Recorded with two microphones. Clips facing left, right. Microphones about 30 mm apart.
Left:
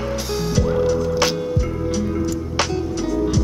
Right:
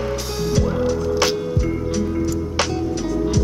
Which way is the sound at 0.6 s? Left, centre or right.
Centre.